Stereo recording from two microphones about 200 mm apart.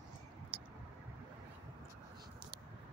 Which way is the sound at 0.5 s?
25° right (ahead or behind).